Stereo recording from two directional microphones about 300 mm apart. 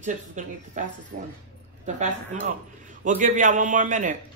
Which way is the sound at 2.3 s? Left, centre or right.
Right.